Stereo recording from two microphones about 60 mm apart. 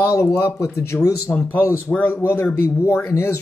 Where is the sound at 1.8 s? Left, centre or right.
Left.